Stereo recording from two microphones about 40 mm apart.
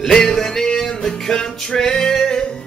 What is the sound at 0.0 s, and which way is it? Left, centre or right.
Music, centre.